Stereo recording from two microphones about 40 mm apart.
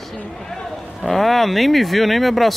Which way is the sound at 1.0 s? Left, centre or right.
Centre.